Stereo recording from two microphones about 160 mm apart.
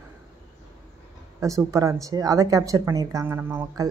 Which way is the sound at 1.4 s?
20° right (ahead or behind).